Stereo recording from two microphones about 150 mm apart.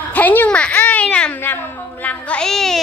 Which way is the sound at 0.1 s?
10° left (ahead or behind).